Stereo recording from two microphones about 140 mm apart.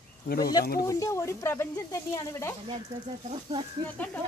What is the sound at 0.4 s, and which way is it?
Speech, 25° left (ahead or behind).